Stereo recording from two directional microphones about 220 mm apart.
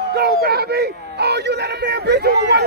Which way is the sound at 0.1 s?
45° right (ahead or behind).